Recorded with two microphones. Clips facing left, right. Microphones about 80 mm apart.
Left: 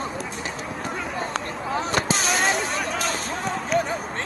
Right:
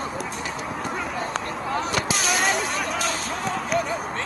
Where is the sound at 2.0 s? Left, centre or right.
Left.